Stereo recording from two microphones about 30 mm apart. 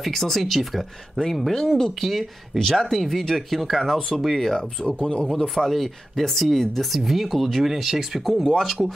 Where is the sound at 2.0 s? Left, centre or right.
Centre.